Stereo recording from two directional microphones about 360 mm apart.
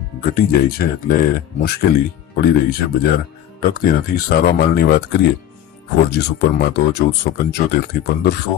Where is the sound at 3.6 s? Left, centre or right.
Left.